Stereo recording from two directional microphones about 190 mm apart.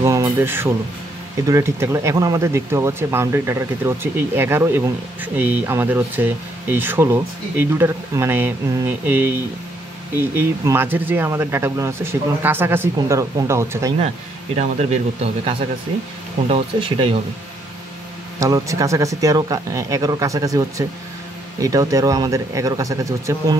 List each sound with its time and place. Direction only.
0.0 s speech: 15° right (ahead or behind)
10.3 s speech: 15° right (ahead or behind)
14.0 s speech: 35° right (ahead or behind)
16.4 s speech: 30° right (ahead or behind)
18.4 s speech: 15° right (ahead or behind)